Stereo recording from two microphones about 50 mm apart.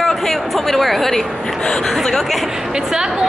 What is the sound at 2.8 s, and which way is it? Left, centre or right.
Speech, centre.